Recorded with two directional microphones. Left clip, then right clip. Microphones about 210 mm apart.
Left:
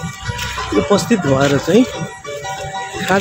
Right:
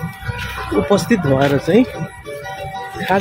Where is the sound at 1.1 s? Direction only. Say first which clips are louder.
Left 1 dB; 5° right (ahead or behind).